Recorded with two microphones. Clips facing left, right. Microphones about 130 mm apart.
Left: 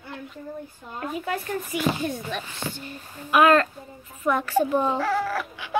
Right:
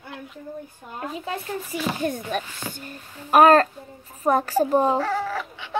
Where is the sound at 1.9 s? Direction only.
50° right (ahead or behind); by 5.0 s 35° right (ahead or behind).